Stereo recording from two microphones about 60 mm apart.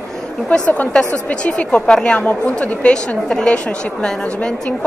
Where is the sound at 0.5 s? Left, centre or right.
Left.